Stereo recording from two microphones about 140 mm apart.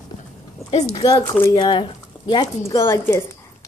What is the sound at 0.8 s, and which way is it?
Speech, 25° left (ahead or behind).